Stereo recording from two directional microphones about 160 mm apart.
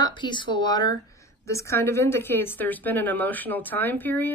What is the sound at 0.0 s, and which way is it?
A woman's voice, 30° left (ahead or behind).